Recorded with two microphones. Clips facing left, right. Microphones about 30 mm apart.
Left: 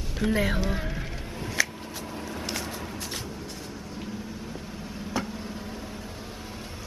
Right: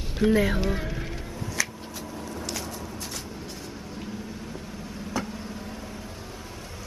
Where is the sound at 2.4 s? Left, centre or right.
Left.